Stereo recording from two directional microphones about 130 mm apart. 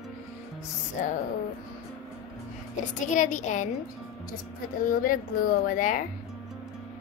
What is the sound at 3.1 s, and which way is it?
Speech, 70° left (ahead or behind).